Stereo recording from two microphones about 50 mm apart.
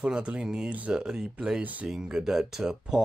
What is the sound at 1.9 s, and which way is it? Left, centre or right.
Speech, centre.